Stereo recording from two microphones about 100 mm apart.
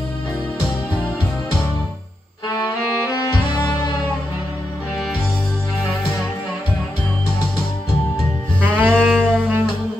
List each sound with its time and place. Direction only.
2.4 s music: 35° left (ahead or behind)
8.5 s music: 20° right (ahead or behind)